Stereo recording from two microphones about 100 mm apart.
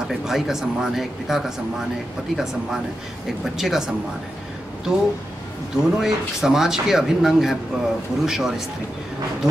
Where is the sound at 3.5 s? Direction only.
5° right (ahead or behind).